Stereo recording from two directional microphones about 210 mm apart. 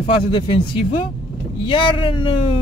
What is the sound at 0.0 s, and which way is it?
Speech, 25° left (ahead or behind).